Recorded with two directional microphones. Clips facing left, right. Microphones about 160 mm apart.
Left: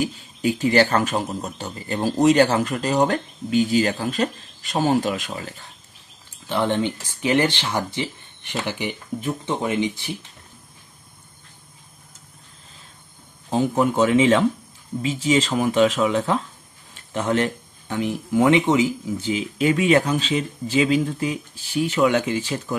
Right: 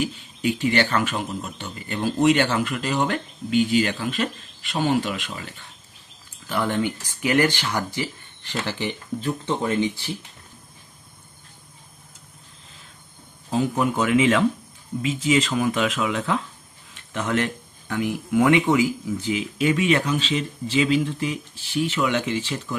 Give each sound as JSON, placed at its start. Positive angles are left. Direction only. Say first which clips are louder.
{"t": 0.0, "sound": "speech", "louder": "left 2 dB", "side_deg": 40}
{"t": 6.5, "sound": "speech", "louder": "left 2 dB", "side_deg": 25}
{"t": 13.5, "sound": "speech", "louder": "left 2 dB", "side_deg": 30}